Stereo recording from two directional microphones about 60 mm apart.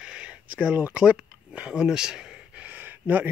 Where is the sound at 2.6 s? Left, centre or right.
Right.